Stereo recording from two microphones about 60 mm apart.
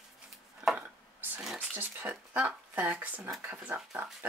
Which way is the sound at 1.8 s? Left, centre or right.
Right.